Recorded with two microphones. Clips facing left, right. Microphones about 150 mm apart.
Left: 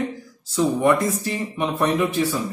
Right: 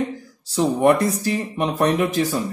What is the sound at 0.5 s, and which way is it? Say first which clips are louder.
Speech: right 2 dB; 35° right (ahead or behind).